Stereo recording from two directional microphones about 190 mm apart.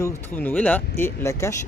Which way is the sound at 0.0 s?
10° left (ahead or behind).